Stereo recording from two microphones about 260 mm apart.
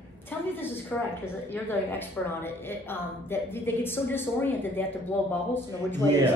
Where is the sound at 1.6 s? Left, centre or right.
Centre.